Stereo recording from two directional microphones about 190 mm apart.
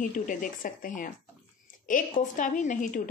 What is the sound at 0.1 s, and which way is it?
Speech, 45° left (ahead or behind).